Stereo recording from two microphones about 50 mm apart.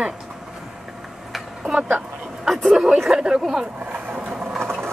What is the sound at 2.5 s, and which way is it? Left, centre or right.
Speech, centre.